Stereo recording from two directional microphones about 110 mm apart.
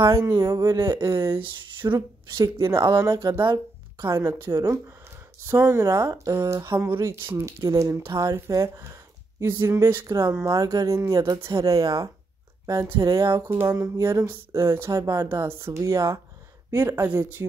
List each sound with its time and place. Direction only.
0.0 s speech: 25° right (ahead or behind)
1.4 s speech: 50° right (ahead or behind)
2.0 s speech: 30° right (ahead or behind)
13.4 s speech: 20° right (ahead or behind)
13.7 s speech: 30° right (ahead or behind)